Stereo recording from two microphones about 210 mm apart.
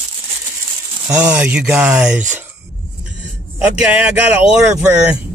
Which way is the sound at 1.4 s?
5° right (ahead or behind).